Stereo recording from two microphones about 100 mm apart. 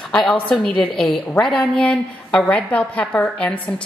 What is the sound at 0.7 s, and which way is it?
A woman's voice, 5° left (ahead or behind).